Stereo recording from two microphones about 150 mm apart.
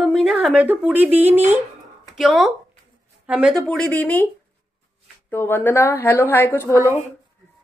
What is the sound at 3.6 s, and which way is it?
Speech, 10° left (ahead or behind).